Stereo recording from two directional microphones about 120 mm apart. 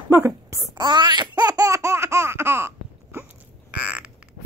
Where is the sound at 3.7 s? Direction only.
10° right (ahead or behind).